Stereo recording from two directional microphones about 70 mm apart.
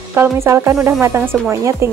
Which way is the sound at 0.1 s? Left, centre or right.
Right.